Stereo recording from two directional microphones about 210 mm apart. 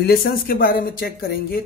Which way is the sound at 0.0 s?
45° left (ahead or behind).